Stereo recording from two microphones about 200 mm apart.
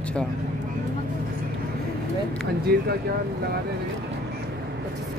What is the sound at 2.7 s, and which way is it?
Speech, 55° right (ahead or behind).